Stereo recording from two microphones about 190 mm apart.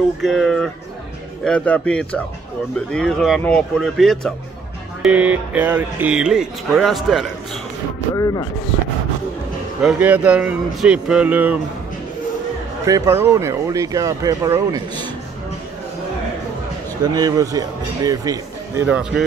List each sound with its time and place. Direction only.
0.2 s speech: centre (ahead or behind)
8.2 s speech: 20° left (ahead or behind)
9.8 s speech: 5° right (ahead or behind)
12.8 s speech: 15° right (ahead or behind)
17.0 s speech: 20° right (ahead or behind)
18.9 s speech: 5° right (ahead or behind)